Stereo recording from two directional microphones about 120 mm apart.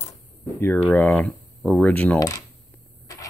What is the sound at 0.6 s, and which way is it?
Speech, 15° left (ahead or behind).